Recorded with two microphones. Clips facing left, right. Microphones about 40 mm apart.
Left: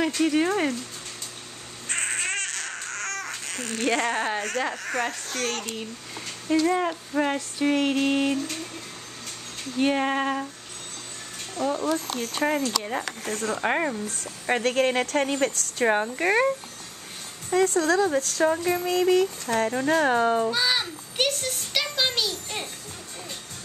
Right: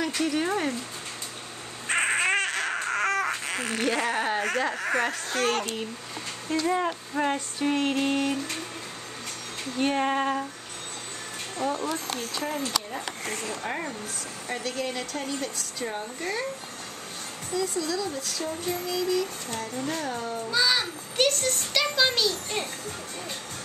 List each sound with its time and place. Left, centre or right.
0.2 s a child's voice: centre
1.9 s baby cry: centre
4.7 s speech: centre
6.5 s speech: centre
8.1 s a child's voice: centre
9.8 s a child's voice: centre
11.6 s speech: centre
12.4 s speech: left
14.5 s speech: left
17.5 s speech: left
20.5 s a child's voice: centre